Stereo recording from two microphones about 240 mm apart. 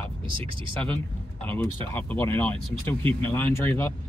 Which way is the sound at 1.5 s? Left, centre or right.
Centre.